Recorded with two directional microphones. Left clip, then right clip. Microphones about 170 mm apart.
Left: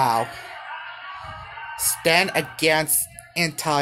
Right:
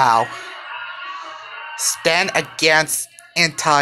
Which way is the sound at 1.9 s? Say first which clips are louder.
Right 2 dB; 10° left (ahead or behind).